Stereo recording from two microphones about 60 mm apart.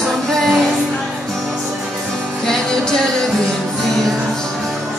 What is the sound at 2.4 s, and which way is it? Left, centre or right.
Music, centre.